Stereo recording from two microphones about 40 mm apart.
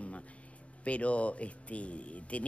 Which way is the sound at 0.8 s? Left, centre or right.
Left.